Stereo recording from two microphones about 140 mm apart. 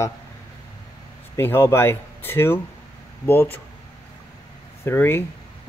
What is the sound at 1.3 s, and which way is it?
Speech, 15° left (ahead or behind).